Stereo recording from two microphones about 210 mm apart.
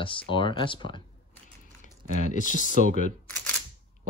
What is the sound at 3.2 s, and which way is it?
Camera, 5° left (ahead or behind).